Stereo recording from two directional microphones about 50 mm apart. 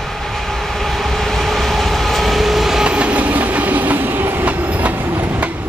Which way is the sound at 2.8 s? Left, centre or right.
Right.